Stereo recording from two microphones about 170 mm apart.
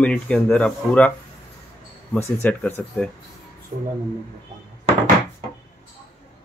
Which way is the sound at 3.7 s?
40° right (ahead or behind).